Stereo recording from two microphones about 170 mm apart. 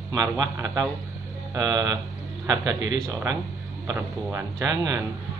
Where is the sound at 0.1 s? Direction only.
20° right (ahead or behind).